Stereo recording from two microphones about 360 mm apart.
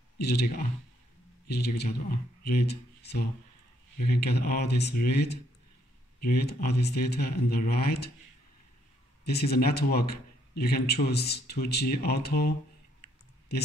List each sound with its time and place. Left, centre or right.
0.2 s speech: left
9.2 s speech: left